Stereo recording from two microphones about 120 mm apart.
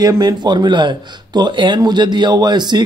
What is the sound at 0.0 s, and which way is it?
Speech, 35° right (ahead or behind).